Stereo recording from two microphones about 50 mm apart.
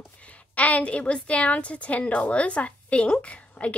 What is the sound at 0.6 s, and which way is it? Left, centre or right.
A woman's voice, left.